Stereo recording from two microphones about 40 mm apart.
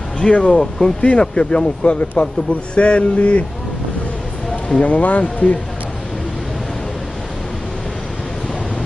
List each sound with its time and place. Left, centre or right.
0.2 s speech: left
0.6 s speech: centre
1.0 s speech: left
4.5 s a sound: left
4.8 s speech: left